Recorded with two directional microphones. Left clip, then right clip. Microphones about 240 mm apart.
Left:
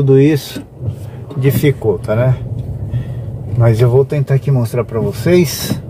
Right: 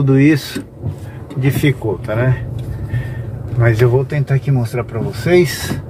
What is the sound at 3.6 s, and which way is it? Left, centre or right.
Speech, left.